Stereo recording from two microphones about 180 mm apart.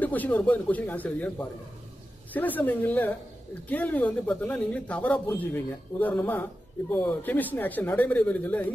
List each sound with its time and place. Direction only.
0.0 s speech: 10° left (ahead or behind)